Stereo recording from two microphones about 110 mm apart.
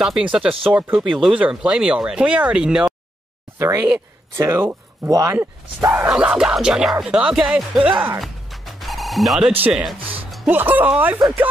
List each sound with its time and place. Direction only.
0.0 s speech: 10° right (ahead or behind)
3.5 s speech: 25° right (ahead or behind)
6.0 s speech: 10° right (ahead or behind)
8.2 s music: centre (ahead or behind)
9.7 s speech: 5° right (ahead or behind)
10.4 s speech: 15° right (ahead or behind)